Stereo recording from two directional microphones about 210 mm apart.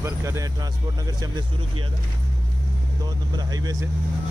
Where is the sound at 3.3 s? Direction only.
15° right (ahead or behind).